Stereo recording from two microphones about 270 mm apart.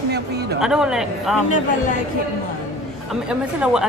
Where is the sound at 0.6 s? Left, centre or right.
Centre.